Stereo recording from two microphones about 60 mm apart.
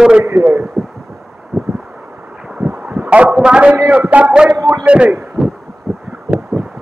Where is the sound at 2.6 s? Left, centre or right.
Right.